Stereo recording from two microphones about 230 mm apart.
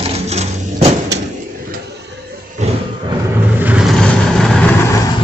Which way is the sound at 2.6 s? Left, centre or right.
Right.